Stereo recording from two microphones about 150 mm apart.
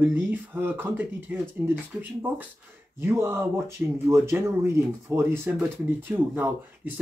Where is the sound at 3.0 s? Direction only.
15° right (ahead or behind).